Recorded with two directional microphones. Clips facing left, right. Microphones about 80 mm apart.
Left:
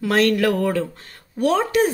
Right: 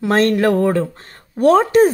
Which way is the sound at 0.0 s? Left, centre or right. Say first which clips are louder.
Right 3 dB; right.